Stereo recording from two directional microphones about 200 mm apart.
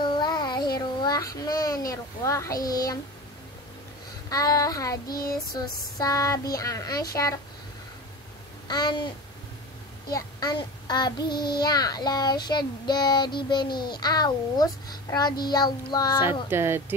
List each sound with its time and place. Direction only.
0.0 s a sound: 20° left (ahead or behind)
1.9 s speech: 15° left (ahead or behind)
4.3 s speech: 20° left (ahead or behind)
5.1 s child singing: 45° left (ahead or behind)
5.6 s speech: 20° left (ahead or behind)
8.6 s child singing: 20° left (ahead or behind)
10.1 s child singing: 20° left (ahead or behind)
16.4 s speech: 10° right (ahead or behind)